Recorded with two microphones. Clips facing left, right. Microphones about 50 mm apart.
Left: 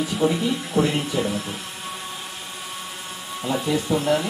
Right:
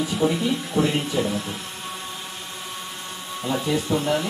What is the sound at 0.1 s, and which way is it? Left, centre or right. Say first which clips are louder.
Speech: left 1 dB; centre.